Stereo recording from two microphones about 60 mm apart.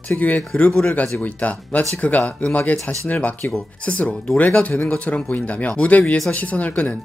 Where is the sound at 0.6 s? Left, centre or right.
Left.